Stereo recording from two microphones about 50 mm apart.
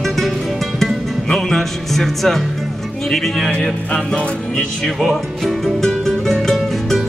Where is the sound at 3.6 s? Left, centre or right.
Centre.